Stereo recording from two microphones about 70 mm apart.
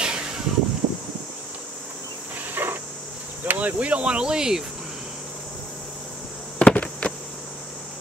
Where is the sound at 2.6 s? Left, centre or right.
Right.